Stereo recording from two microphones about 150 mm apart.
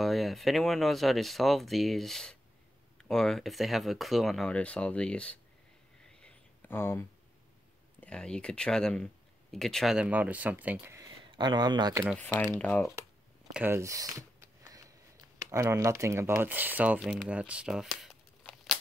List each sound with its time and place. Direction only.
0.0 s speech: centre (ahead or behind)
6.0 s a sound: 10° left (ahead or behind)
8.0 s speech: 5° left (ahead or behind); by 12.0 s 25° right (ahead or behind)
12.2 s speech: 10° left (ahead or behind)
13.5 s a sound: 10° right (ahead or behind)
15.3 s speech: 20° right (ahead or behind); by 18.8 s centre (ahead or behind)